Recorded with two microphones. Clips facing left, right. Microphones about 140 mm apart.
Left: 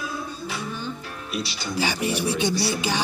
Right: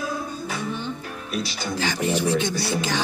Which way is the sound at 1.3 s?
45° right (ahead or behind).